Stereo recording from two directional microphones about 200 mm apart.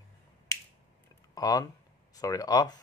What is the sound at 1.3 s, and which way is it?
Speech, 20° left (ahead or behind).